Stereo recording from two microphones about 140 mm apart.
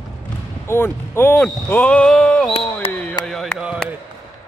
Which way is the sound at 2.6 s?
10° left (ahead or behind).